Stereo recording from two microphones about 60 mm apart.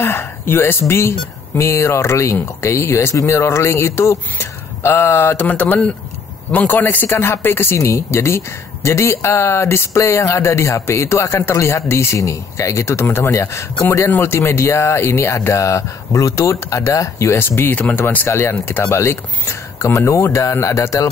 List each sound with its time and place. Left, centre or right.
0.0 s a woman's voice: left
7.2 s a woman's voice: left